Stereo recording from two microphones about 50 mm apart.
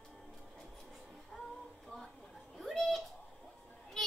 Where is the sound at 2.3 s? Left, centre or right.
Centre.